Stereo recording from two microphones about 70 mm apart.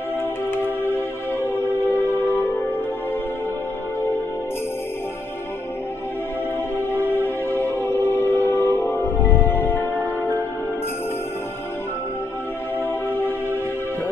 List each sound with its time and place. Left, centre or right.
0.5 s music: left
6.9 s music: left